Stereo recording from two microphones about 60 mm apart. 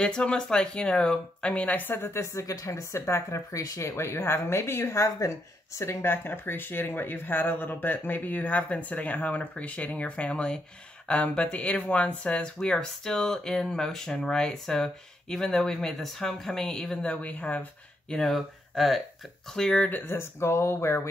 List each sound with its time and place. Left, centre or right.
0.0 s speech: centre; by 3.3 s left
3.3 s speech: left
3.9 s speech: left
5.9 s speech: left
18.1 s speech: centre
19.5 s speech: centre
19.9 s speech: left